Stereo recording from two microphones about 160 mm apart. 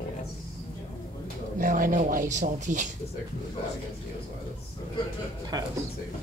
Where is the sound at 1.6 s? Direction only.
55° right (ahead or behind).